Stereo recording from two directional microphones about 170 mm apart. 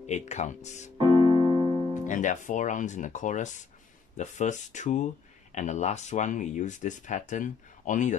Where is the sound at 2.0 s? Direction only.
45° left (ahead or behind).